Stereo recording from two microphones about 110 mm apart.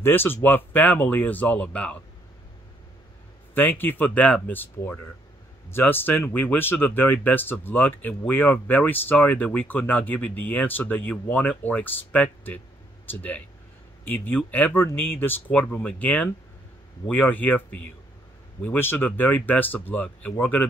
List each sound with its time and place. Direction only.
0.0 s speech: 20° left (ahead or behind)
3.5 s speech: 15° left (ahead or behind)